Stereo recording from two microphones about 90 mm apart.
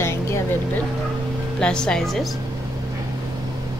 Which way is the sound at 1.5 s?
10° left (ahead or behind).